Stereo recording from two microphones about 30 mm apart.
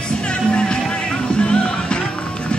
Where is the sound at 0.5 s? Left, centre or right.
Left.